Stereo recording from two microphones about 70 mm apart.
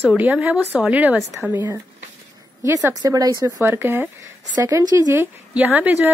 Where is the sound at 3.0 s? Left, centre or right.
Right.